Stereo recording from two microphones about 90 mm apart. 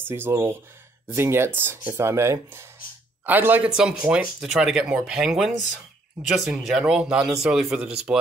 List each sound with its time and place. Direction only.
0.0 s speech: 25° right (ahead or behind)
3.3 s speech: 20° right (ahead or behind)
3.6 s speech: 10° right (ahead or behind)
8.1 s speech: 20° right (ahead or behind)